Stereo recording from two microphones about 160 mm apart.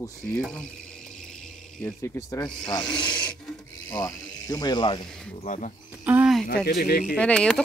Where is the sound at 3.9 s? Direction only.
20° left (ahead or behind).